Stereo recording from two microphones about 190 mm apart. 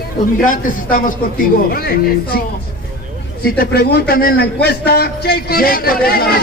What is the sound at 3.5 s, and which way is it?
A man's voice, 55° left (ahead or behind).